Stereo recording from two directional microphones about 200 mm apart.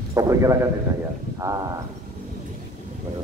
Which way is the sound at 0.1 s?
15° right (ahead or behind).